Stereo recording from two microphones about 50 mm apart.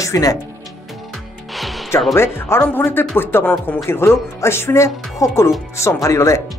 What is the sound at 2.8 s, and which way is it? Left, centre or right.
Speech, left.